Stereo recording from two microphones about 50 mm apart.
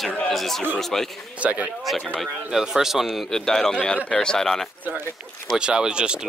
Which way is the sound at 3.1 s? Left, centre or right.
Centre.